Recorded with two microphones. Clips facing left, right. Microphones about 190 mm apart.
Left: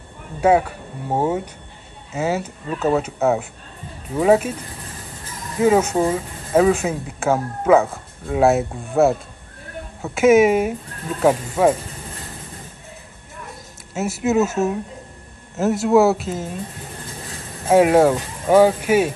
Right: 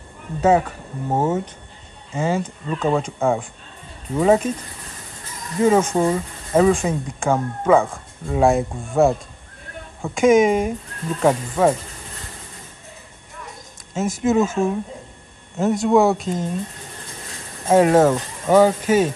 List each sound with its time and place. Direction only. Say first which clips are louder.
0.4 s speech: left 1 dB; 10° left (ahead or behind)
5.6 s speech: even; 5° left (ahead or behind)
13.9 s speech: even; 5° left (ahead or behind)
17.6 s speech: left 1 dB; 5° left (ahead or behind)